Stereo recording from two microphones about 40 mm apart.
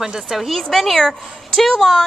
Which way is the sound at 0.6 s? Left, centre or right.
Centre.